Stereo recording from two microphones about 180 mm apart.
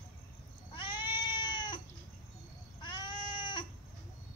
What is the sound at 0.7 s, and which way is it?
Cat, 25° left (ahead or behind).